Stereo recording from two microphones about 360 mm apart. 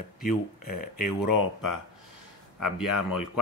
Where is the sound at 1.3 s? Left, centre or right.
Left.